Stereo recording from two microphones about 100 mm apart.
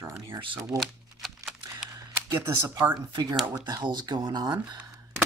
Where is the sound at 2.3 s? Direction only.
25° right (ahead or behind).